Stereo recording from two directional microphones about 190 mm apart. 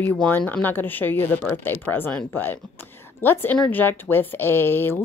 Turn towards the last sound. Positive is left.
turn(degrees=10)  # may be behind; listen again after turning